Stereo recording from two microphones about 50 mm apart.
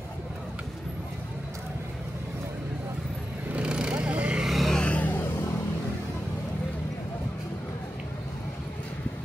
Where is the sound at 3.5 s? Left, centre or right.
Right.